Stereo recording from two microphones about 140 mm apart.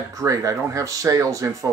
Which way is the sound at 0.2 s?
25° right (ahead or behind).